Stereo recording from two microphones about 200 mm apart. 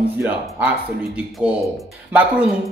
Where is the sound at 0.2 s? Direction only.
10° right (ahead or behind).